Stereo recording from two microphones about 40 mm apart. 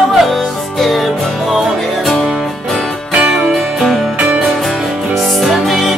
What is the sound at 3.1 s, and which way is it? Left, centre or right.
Music, right.